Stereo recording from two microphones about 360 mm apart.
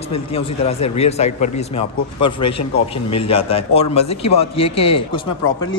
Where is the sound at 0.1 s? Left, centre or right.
Centre.